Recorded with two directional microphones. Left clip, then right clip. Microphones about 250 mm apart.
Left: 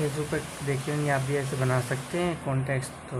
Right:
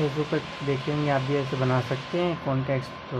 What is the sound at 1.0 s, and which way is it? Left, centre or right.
Speech, centre.